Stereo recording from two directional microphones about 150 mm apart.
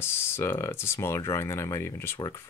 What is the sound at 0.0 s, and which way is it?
Speech, 15° left (ahead or behind).